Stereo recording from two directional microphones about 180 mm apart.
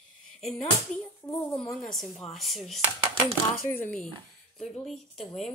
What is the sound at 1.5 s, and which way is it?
Speech, 5° left (ahead or behind).